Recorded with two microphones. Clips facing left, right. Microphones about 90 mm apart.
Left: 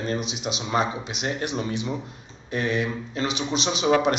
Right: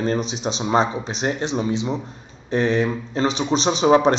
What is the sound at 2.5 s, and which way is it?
Speech, 35° right (ahead or behind).